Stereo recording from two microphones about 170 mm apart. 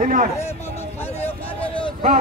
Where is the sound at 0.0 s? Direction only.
50° right (ahead or behind).